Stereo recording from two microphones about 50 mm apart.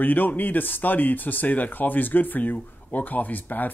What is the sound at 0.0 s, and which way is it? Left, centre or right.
Speech, left.